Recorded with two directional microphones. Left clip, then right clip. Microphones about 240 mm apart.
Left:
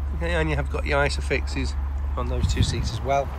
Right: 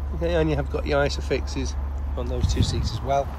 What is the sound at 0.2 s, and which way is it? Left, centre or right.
Speech, centre.